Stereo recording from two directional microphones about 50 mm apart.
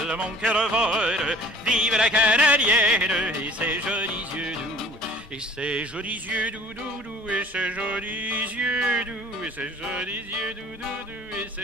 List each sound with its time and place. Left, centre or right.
0.2 s music: right
5.6 s music: right
8.5 s music: right